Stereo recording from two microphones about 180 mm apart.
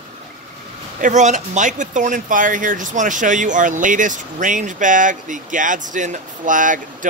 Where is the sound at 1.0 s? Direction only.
40° right (ahead or behind).